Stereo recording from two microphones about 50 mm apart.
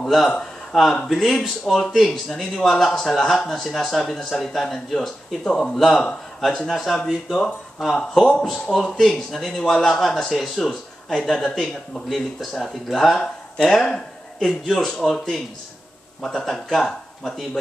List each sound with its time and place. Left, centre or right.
0.0 s a man's voice: centre
5.4 s a man's voice: centre
6.7 s a man's voice: centre